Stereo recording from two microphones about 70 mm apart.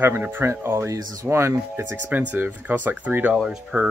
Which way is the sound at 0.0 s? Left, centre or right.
Right.